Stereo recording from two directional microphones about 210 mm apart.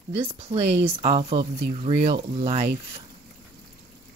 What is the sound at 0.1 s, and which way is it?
Speech, 25° right (ahead or behind).